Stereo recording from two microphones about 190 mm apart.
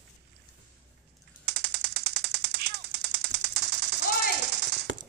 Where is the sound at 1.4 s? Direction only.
60° right (ahead or behind).